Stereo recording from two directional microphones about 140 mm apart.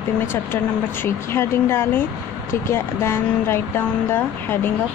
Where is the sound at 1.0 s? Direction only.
15° left (ahead or behind).